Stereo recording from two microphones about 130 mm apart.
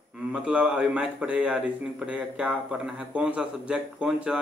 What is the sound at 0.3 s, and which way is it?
A man's voice, 5° right (ahead or behind).